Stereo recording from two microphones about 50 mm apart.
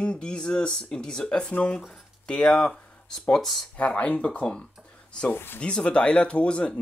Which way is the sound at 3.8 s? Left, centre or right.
Left.